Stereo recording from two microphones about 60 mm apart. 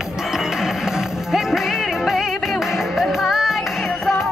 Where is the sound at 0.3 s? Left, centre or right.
Centre.